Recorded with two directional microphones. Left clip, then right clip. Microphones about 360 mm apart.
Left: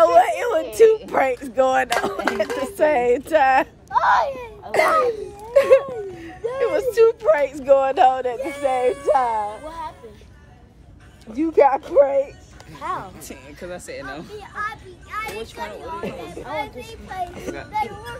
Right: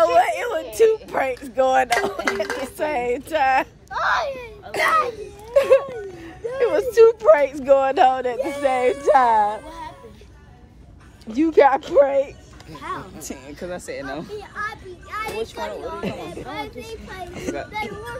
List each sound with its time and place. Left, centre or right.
0.0 s a sound: centre
1.0 s a child's voice: centre
3.9 s speech: left
4.6 s a child's voice: centre
5.0 s a sound: centre
6.6 s a woman's voice: centre
9.7 s speech: centre
11.3 s speech: right
12.8 s speech: centre
13.2 s a woman's voice: centre
16.4 s a child's voice: centre